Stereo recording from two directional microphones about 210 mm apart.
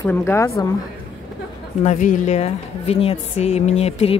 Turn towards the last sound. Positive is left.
turn(degrees=30)  # may be behind; listen again after turning